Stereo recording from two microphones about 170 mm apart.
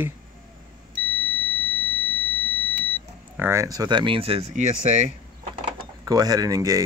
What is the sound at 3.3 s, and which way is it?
Speech, 15° right (ahead or behind).